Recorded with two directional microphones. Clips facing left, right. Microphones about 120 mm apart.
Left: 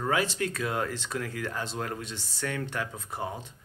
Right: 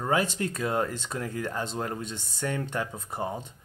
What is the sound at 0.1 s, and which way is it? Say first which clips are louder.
Speech: right 3 dB; 30° right (ahead or behind).